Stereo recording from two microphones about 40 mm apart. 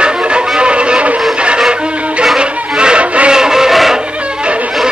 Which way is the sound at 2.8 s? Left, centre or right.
Right.